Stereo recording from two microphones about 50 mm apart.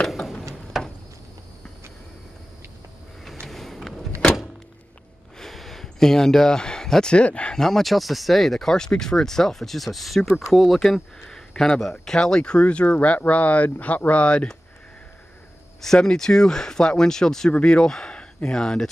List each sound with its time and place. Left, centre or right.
0.7 s a sound: centre
3.4 s vehicle: centre
5.4 s a sound: centre; by 7.5 s left
7.5 s speech: centre
15.8 s speech: centre
17.5 s speech: left